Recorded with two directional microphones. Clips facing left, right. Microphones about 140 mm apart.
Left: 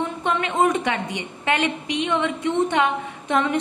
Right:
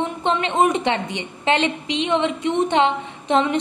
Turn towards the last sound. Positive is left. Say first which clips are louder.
# right 3 dB
turn(degrees=-25)  # may be behind; listen again after turning